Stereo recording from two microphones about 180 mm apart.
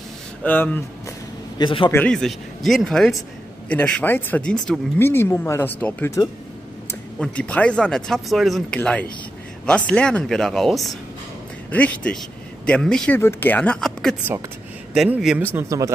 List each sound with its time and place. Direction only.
0.4 s speech: 10° left (ahead or behind)
1.6 s a man's voice: 30° left (ahead or behind)
1.9 s speech: 10° left (ahead or behind); by 15.9 s 15° right (ahead or behind)